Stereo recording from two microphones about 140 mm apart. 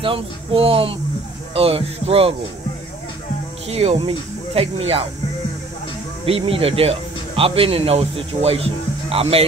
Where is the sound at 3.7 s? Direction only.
45° right (ahead or behind).